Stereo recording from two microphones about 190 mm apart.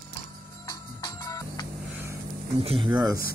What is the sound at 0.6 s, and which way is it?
Music, 15° left (ahead or behind).